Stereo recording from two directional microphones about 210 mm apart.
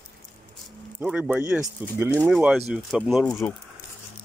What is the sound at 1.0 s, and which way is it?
Speech, 5° right (ahead or behind).